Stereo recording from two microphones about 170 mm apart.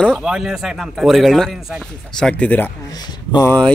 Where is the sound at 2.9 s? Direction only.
25° left (ahead or behind).